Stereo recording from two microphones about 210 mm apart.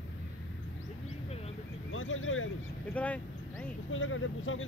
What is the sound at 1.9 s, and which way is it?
Speech, 70° left (ahead or behind).